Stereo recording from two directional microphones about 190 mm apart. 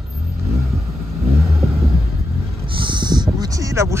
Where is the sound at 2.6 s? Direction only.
25° right (ahead or behind).